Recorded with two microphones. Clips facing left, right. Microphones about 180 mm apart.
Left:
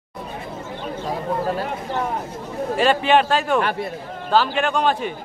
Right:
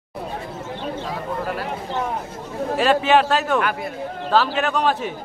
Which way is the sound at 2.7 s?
Centre (ahead or behind).